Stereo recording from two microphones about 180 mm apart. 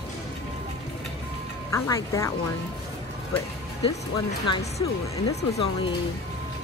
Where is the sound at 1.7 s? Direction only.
15° left (ahead or behind).